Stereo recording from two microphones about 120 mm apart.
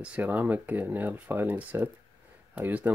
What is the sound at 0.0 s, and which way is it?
Speech, 10° right (ahead or behind).